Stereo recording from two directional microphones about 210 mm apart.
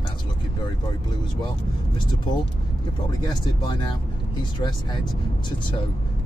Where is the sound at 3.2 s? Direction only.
20° left (ahead or behind).